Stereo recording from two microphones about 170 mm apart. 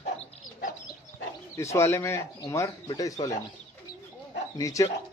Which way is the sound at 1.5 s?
15° left (ahead or behind).